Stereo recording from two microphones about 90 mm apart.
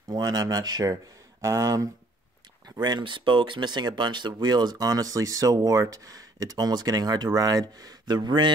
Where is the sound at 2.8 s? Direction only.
55° right (ahead or behind).